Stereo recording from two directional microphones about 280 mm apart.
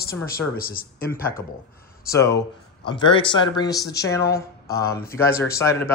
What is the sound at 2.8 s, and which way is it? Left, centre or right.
Speech, centre.